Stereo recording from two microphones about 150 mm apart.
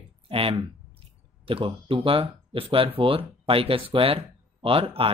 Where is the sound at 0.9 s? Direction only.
40° right (ahead or behind).